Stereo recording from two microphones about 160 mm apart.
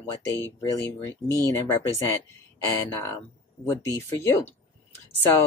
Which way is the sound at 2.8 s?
20° left (ahead or behind).